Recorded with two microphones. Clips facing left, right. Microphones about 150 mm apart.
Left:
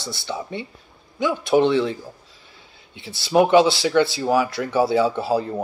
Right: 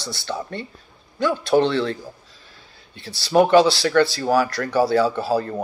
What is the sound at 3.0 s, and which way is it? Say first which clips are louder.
Speech: right 1 dB; 20° left (ahead or behind).